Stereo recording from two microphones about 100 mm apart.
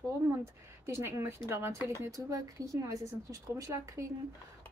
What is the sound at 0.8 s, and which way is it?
A woman's voice, 25° right (ahead or behind).